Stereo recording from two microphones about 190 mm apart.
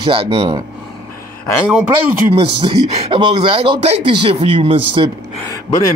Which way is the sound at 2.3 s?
30° right (ahead or behind).